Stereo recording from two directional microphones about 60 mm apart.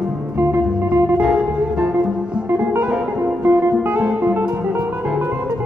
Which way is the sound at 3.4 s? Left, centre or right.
Right.